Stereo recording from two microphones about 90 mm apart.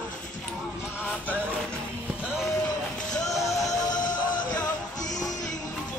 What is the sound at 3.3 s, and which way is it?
Music, 40° left (ahead or behind).